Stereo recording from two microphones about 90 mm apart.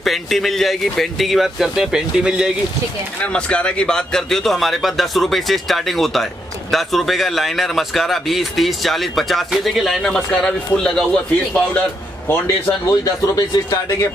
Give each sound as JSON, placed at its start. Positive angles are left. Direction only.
{"t": 0.0, "sound": "speech", "side_deg": 0}
{"t": 3.2, "sound": "a man's voice", "side_deg": 10}
{"t": 12.8, "sound": "a man's voice", "side_deg": 40}